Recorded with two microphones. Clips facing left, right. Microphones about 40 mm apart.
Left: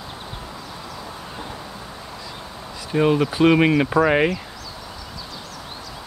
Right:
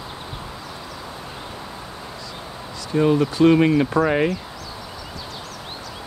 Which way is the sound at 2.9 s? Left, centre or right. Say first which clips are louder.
Even; left.